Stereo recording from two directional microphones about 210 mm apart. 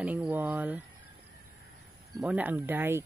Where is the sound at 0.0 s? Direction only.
5° right (ahead or behind).